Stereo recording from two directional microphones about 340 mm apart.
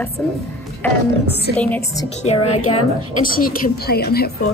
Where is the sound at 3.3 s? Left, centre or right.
Left.